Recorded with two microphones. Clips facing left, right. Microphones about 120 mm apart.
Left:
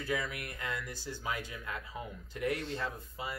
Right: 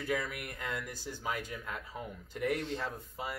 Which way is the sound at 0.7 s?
15° right (ahead or behind).